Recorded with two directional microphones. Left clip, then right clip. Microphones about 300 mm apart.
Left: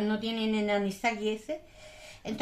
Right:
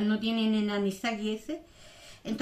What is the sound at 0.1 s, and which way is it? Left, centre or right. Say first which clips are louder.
A child's voice: right 1 dB; centre.